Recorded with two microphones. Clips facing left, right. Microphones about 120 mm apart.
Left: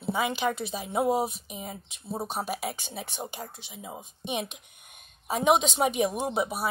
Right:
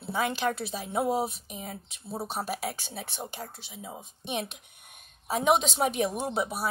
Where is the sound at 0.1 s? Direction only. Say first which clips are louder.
Left 1 dB; 5° left (ahead or behind).